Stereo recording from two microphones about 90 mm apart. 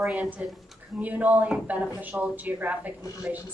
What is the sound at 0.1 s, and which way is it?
A woman's voice, 15° right (ahead or behind).